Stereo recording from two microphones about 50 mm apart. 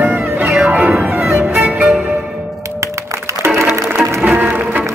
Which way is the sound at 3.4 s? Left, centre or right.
Right.